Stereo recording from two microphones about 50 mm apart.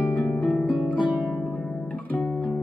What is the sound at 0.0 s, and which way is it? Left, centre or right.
Music, left.